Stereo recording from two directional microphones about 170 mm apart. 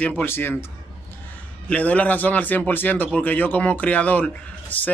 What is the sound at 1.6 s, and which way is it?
Speech, 10° left (ahead or behind).